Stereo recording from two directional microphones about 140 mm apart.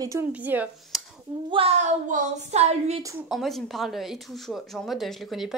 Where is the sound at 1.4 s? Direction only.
40° right (ahead or behind).